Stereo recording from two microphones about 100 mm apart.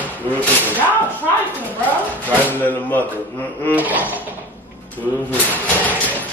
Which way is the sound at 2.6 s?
15° left (ahead or behind).